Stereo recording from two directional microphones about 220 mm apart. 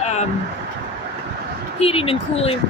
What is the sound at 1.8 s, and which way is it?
Speech, 25° left (ahead or behind).